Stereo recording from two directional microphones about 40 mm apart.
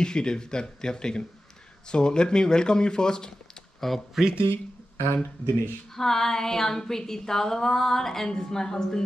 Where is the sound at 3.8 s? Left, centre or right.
Centre.